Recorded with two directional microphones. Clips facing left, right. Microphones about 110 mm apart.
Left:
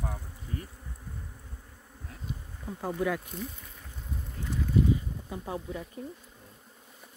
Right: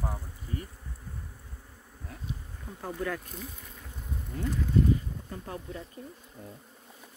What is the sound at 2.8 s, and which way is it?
Speech, 10° left (ahead or behind).